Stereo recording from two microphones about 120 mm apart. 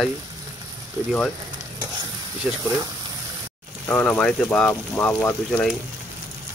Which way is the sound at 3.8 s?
15° left (ahead or behind).